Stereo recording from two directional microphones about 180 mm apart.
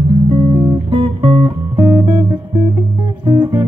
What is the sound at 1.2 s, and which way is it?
Guitar, 10° right (ahead or behind).